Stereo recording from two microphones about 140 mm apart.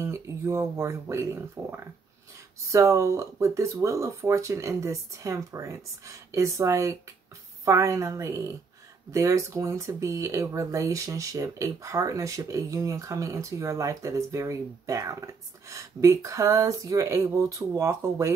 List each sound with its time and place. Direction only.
0.0 s speech: 20° right (ahead or behind)